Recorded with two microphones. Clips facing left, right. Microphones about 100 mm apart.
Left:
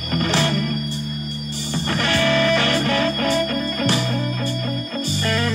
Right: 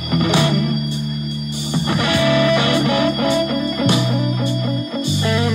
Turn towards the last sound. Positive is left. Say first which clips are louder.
# right 4 dB
turn(degrees=-10)  # may be behind; listen again after turning